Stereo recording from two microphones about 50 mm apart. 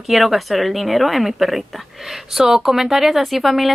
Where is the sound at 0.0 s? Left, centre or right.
Centre.